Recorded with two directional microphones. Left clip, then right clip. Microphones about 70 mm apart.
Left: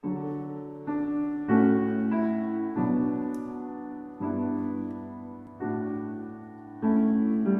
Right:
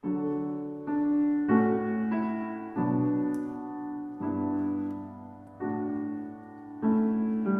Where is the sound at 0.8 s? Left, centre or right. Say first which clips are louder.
Right 3 dB; right.